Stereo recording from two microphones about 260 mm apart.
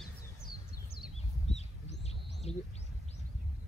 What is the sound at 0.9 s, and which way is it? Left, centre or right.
Bird, left.